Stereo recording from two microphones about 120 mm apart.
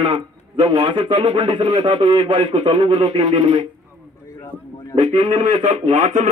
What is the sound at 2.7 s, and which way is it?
Speech, 65° right (ahead or behind).